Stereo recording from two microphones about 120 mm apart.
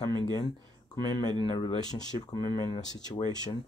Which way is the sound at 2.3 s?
35° left (ahead or behind).